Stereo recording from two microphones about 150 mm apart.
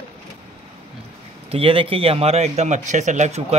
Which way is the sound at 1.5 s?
35° right (ahead or behind).